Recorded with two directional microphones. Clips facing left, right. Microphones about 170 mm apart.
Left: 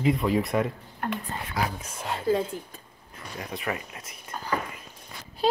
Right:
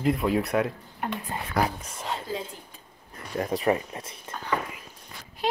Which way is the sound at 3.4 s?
35° right (ahead or behind).